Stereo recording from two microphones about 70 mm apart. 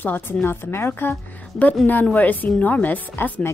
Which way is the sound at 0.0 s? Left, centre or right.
Left.